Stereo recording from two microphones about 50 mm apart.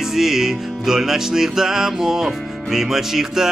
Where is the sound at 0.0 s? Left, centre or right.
Centre.